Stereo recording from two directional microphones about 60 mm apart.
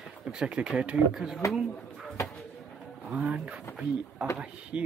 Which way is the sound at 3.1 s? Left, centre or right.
Centre.